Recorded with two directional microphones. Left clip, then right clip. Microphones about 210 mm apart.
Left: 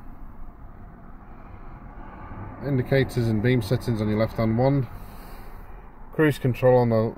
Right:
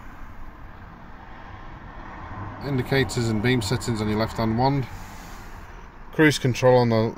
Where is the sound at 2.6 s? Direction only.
20° left (ahead or behind).